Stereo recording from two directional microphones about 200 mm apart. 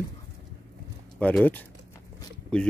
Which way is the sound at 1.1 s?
5° left (ahead or behind).